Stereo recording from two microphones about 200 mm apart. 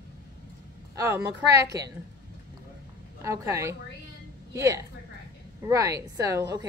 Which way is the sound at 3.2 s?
15° right (ahead or behind).